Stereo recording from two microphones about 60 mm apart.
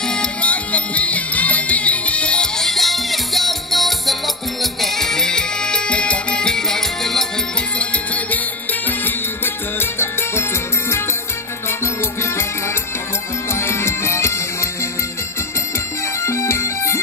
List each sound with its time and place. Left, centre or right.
0.1 s music: centre
7.8 s music: left
9.8 s music: left
13.5 s music: left
16.3 s music: left